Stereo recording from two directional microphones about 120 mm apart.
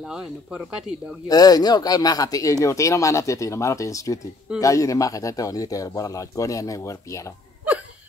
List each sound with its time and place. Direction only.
0.1 s speech: 5° right (ahead or behind)
1.2 s speech: 30° left (ahead or behind)